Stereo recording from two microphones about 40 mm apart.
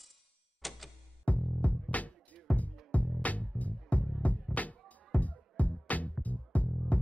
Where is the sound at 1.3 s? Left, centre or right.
Left.